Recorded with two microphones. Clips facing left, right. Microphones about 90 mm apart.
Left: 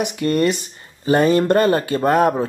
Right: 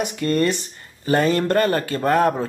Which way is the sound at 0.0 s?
15° left (ahead or behind).